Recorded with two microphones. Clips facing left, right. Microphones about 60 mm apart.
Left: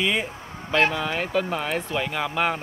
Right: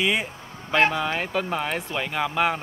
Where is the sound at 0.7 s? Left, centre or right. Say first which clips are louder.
Right 1 dB; centre.